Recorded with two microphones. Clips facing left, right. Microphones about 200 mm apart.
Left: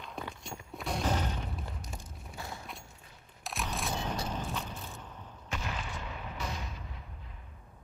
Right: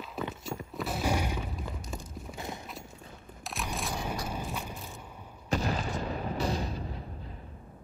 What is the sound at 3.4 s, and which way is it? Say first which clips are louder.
Single-lens reflex camera: even; centre (ahead or behind).